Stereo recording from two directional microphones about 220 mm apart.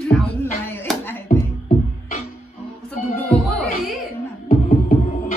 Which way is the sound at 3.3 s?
Centre (ahead or behind).